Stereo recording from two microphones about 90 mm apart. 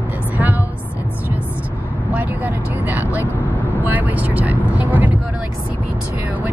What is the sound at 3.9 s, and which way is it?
Vehicle, 15° right (ahead or behind).